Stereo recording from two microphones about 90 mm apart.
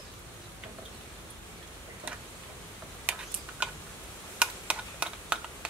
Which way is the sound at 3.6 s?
15° right (ahead or behind).